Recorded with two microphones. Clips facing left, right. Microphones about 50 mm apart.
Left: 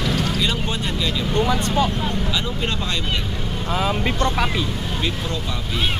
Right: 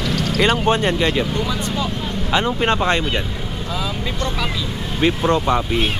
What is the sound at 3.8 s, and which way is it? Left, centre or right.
Speech, left.